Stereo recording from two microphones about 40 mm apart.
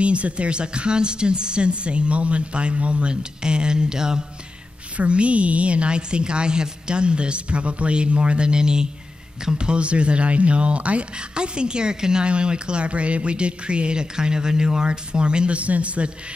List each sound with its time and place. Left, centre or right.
0.0 s speech: right
4.9 s speech: right